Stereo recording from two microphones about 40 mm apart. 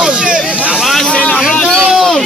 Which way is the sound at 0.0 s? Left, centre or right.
Right.